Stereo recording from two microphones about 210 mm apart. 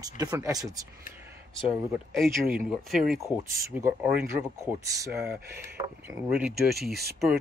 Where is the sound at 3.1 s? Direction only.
15° right (ahead or behind).